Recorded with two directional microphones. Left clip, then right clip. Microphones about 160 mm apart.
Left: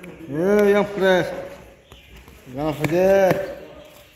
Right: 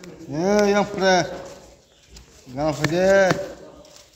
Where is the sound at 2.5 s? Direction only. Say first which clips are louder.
Even; 40° right (ahead or behind).